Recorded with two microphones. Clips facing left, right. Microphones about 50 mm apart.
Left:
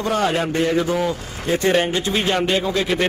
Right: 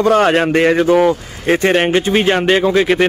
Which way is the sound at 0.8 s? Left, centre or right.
Right.